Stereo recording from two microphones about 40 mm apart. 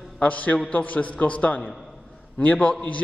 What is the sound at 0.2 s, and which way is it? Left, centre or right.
A man's voice, left.